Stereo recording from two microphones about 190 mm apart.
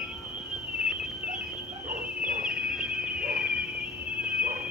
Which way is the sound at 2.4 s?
5° right (ahead or behind).